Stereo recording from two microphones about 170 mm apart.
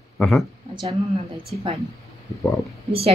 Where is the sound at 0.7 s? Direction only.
30° right (ahead or behind).